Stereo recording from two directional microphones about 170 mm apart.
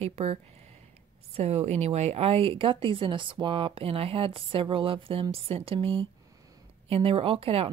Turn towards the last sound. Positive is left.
turn(degrees=-35)  # may be behind; listen again after turning